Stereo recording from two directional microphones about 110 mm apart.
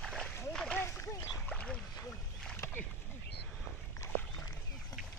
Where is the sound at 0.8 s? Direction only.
25° left (ahead or behind).